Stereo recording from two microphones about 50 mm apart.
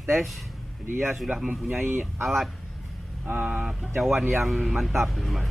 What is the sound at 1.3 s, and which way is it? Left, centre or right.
Speech, right.